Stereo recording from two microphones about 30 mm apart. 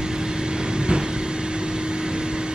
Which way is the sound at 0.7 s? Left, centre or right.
Right.